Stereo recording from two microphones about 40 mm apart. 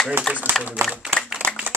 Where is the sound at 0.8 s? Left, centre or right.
Right.